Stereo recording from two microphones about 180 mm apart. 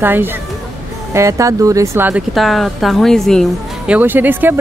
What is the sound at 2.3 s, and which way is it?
Speech, centre (ahead or behind).